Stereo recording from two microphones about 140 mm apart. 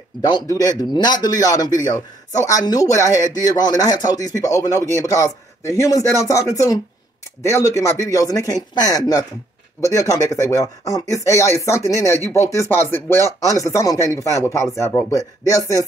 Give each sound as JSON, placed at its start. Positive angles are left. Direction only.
{"t": 0.2, "sound": "a man's voice", "side_deg": 25}